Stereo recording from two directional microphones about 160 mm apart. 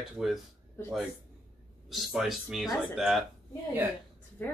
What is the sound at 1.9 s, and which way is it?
Speech, centre (ahead or behind).